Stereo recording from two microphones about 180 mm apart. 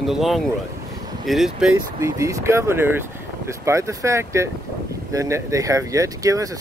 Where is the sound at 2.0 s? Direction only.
15° right (ahead or behind).